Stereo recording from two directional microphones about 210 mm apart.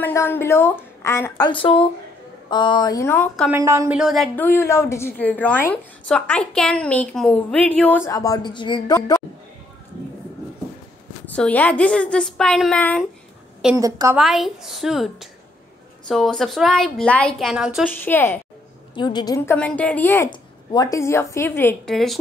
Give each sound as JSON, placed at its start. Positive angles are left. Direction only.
{"t": 0.0, "sound": "a woman's voice", "side_deg": 10}
{"t": 1.5, "sound": "a woman's voice", "side_deg": 25}
{"t": 3.4, "sound": "speech", "side_deg": -15}
{"t": 4.0, "sound": "a woman's voice", "side_deg": 0}
{"t": 11.2, "sound": "a woman's voice", "side_deg": 5}
{"t": 13.7, "sound": "speech", "side_deg": -15}
{"t": 14.1, "sound": "a woman's voice", "side_deg": 0}
{"t": 17.8, "sound": "a woman's voice", "side_deg": 10}
{"t": 18.9, "sound": "a woman's voice", "side_deg": 20}